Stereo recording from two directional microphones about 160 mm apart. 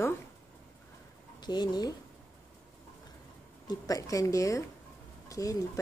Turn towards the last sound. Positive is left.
turn(degrees=20)  # may be behind; listen again after turning